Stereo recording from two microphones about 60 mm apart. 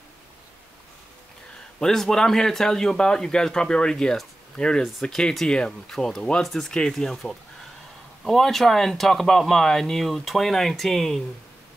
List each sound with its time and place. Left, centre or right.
1.8 s a man's voice: centre